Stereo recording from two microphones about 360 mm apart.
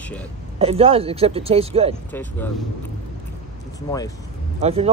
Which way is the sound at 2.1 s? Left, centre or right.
Centre.